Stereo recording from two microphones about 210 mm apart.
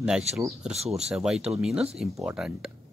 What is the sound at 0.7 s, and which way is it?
Speech, 30° right (ahead or behind).